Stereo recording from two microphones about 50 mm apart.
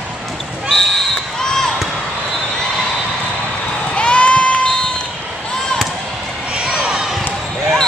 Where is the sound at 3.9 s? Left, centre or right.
Left.